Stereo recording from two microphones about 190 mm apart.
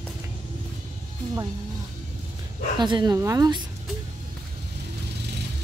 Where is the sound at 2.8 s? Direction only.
25° right (ahead or behind).